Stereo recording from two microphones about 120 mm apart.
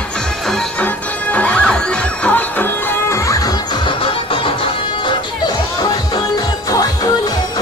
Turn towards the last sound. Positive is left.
turn(degrees=35)  # may be behind; listen again after turning